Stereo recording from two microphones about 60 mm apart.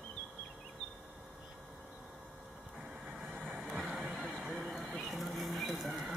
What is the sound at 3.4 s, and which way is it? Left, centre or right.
Vehicle, right.